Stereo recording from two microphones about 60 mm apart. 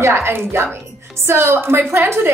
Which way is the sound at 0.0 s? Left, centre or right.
Right.